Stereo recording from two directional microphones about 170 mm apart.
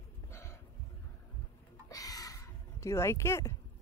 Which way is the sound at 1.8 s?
20° left (ahead or behind).